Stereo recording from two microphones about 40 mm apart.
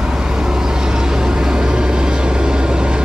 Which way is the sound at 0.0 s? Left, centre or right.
Centre.